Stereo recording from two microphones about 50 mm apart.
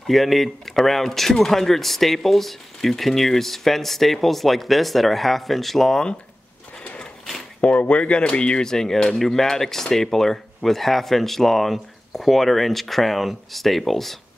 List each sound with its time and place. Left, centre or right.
0.0 s speech: centre
6.8 s gears: left
7.9 s speech: left; by 14.1 s centre